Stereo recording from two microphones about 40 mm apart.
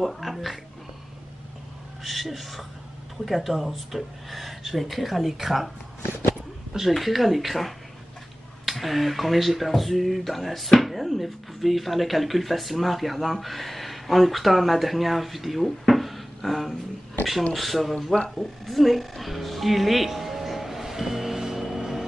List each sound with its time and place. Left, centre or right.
0.0 s speech: centre
2.0 s speech: centre
6.9 s speech: centre
15.9 s a sound: centre
17.6 s speech: centre
18.3 s music: centre